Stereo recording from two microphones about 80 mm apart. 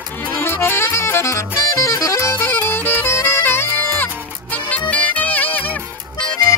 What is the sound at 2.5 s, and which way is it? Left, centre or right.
Music, left.